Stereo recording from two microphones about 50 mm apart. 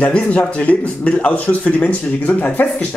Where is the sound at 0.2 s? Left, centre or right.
Left.